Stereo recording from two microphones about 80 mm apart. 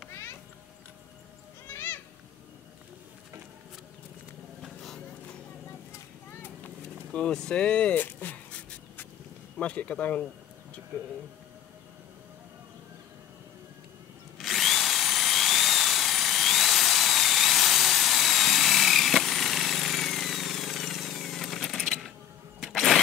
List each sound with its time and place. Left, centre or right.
0.1 s cat: left
1.7 s a sound: left
4.6 s vehicle: centre
6.6 s vehicle: centre
9.6 s speech: centre
14.4 s drill: centre
22.6 s a sound: centre